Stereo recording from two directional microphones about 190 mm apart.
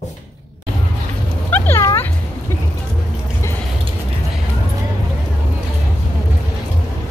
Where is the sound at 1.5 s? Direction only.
15° left (ahead or behind).